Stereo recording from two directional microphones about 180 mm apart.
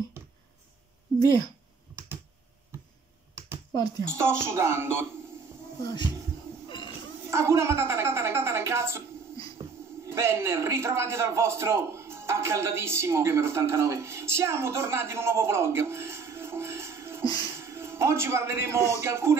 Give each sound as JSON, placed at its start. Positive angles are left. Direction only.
{"t": 4.1, "sound": "a woman's voice", "side_deg": -15}
{"t": 5.8, "sound": "speech", "side_deg": 20}
{"t": 7.2, "sound": "a woman's voice", "side_deg": -15}
{"t": 10.0, "sound": "a man's voice", "side_deg": -15}
{"t": 17.2, "sound": "music", "side_deg": 20}
{"t": 17.6, "sound": "a man's voice", "side_deg": -15}